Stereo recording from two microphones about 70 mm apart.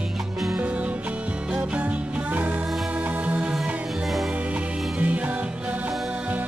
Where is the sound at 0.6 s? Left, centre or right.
Centre.